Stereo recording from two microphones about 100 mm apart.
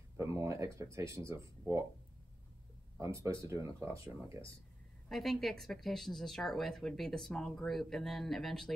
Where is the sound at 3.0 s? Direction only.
30° right (ahead or behind).